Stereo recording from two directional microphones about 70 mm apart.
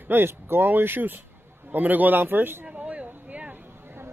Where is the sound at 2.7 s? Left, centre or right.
Centre.